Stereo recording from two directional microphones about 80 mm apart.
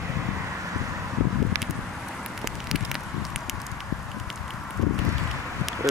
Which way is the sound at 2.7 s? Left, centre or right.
Centre.